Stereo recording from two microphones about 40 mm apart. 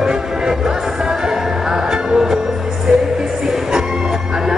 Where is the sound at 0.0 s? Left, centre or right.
Centre.